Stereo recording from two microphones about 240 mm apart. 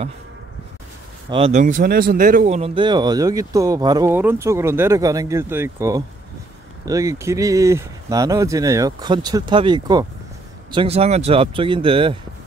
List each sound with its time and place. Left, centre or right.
1.3 s speech: right